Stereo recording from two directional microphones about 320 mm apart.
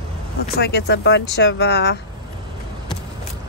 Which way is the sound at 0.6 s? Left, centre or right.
Left.